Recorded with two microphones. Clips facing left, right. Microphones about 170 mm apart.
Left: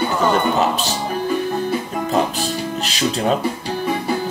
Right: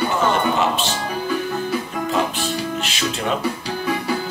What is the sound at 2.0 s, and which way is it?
Music, 40° left (ahead or behind).